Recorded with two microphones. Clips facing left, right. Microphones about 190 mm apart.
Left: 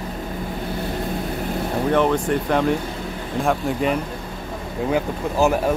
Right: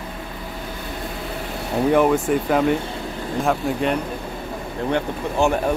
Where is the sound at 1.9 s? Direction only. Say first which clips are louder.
Right 2 dB; 10° right (ahead or behind).